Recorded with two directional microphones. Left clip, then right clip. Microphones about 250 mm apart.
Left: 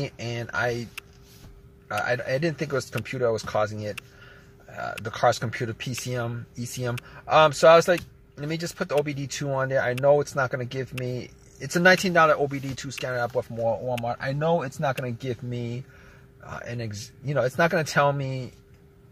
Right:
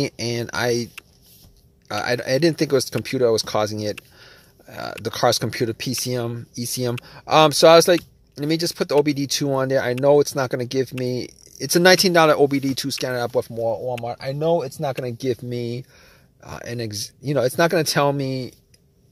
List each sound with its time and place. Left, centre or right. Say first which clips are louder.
0.0 s speech: right 8 dB; right
1.9 s speech: right 4 dB; right
4.2 s a sound: right 2 dB; right
5.0 s speech: right 4 dB; right
15.0 s speech: right 8 dB; right